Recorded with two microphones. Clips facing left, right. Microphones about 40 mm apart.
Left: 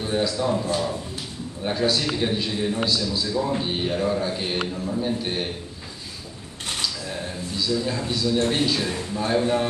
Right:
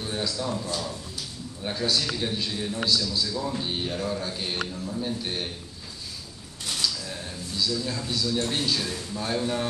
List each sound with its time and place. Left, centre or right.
0.0 s a man's voice: centre
1.6 s a man's voice: centre
6.8 s a sound: left
8.4 s a man's voice: left